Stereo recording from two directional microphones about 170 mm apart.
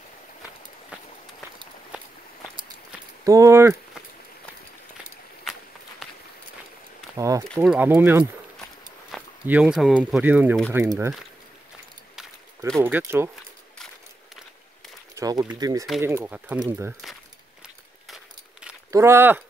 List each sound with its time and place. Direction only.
3.3 s speech: 20° right (ahead or behind)
5.4 s run: centre (ahead or behind)
7.2 s a sound: 20° right (ahead or behind)
7.5 s speech: 10° right (ahead or behind)
12.2 s a sound: 5° left (ahead or behind)
12.8 s speech: 15° right (ahead or behind)
15.1 s speech: 20° right (ahead or behind)
18.0 s a sound: 5° right (ahead or behind)
18.9 s speech: 15° right (ahead or behind)